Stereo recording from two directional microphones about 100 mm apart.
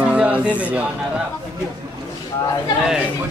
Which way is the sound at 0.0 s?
15° right (ahead or behind).